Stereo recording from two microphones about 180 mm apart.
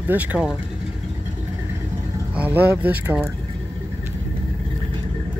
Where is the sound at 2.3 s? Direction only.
10° right (ahead or behind).